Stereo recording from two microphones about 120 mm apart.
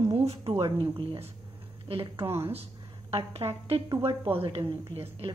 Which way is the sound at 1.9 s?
45° right (ahead or behind).